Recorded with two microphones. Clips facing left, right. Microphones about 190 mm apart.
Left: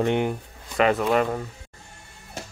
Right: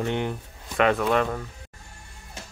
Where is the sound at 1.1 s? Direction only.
15° left (ahead or behind).